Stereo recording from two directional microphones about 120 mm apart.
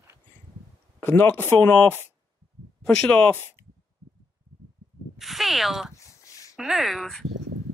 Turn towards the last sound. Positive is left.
turn(degrees=0)  # may be behind; listen again after turning